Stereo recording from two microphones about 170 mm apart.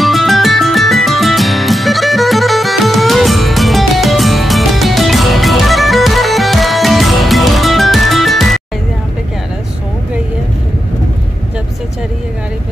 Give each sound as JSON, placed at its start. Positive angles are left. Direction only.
{"t": 0.0, "sound": "music", "side_deg": 0}